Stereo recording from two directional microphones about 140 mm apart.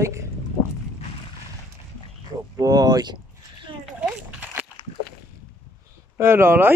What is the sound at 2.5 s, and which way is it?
Speech, 25° right (ahead or behind).